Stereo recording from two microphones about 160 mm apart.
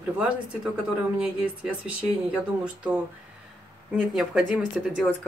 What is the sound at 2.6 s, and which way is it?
A woman's voice, 10° right (ahead or behind).